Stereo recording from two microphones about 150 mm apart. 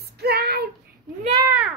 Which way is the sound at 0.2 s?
90° right.